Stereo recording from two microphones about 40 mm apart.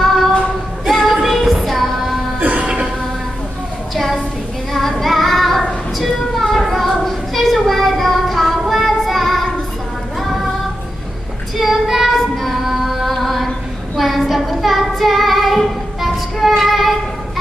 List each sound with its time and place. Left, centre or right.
0.0 s child singing: centre
0.8 s music: centre
2.4 s music: right
3.9 s a sound: centre
5.0 s music: centre
5.9 s a sound: centre
10.2 s music: centre
11.5 s female singing: centre
13.9 s child singing: centre